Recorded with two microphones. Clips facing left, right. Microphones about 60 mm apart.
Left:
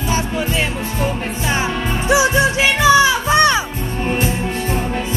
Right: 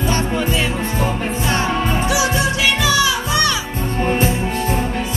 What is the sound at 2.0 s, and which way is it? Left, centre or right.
Music, left.